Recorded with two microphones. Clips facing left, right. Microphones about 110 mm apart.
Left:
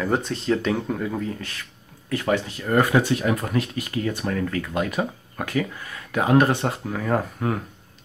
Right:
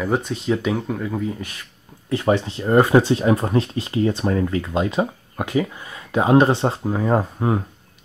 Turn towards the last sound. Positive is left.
turn(degrees=-25)  # may be behind; listen again after turning